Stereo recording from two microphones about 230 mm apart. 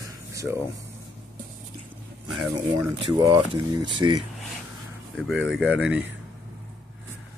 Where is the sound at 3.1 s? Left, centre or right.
Centre.